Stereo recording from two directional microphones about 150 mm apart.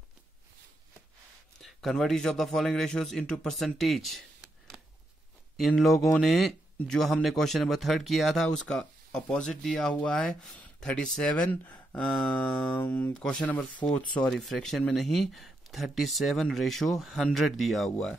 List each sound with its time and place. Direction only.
1.6 s a man's voice: centre (ahead or behind)